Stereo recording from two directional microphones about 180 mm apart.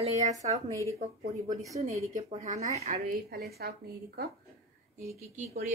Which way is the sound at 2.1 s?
40° right (ahead or behind).